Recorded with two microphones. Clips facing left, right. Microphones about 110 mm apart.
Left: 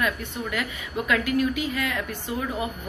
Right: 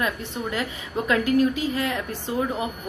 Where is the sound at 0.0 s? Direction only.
30° right (ahead or behind).